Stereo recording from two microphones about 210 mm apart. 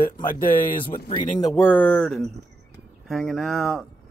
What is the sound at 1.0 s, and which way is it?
Speech, 20° left (ahead or behind).